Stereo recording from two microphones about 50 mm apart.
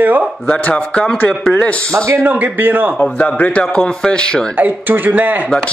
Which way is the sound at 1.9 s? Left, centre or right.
Right.